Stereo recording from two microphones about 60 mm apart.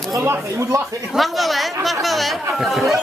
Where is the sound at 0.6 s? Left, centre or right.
Right.